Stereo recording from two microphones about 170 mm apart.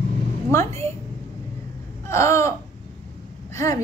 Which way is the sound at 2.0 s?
15° left (ahead or behind).